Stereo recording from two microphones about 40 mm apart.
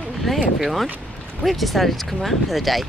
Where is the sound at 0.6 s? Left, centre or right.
Centre.